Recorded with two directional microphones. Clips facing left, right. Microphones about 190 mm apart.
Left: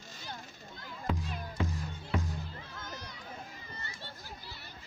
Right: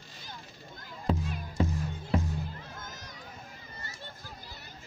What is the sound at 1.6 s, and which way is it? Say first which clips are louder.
Music: right 7 dB; 35° right (ahead or behind).